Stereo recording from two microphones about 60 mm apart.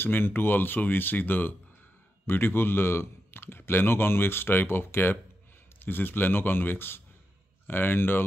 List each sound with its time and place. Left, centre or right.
0.0 s speech: left